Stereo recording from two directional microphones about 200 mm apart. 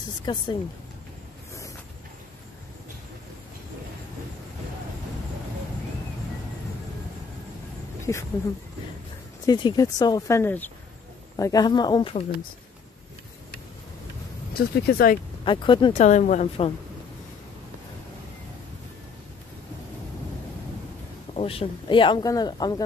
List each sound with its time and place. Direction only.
0.2 s speech: 25° left (ahead or behind)
8.1 s speech: 15° left (ahead or behind)
9.5 s speech: 20° left (ahead or behind)
14.5 s speech: 50° left (ahead or behind)
15.4 s speech: 25° left (ahead or behind)
21.4 s speech: 30° left (ahead or behind)